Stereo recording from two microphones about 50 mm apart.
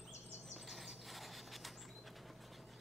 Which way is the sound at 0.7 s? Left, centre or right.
Centre.